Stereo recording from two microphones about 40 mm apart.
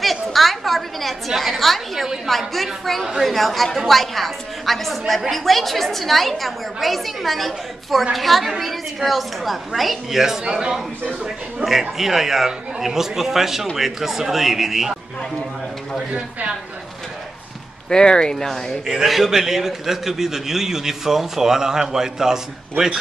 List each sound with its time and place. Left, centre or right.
0.0 s a woman's voice: centre
10.4 s a man's voice: centre
11.6 s a man's voice: centre
17.8 s speech: centre
19.0 s a man's voice: centre